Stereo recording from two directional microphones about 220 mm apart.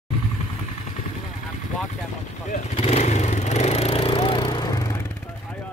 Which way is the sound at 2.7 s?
25° left (ahead or behind).